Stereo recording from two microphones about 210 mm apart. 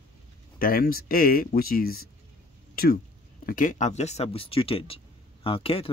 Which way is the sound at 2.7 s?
45° left (ahead or behind).